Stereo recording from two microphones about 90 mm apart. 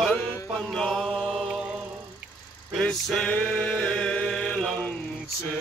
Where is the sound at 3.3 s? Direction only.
20° left (ahead or behind).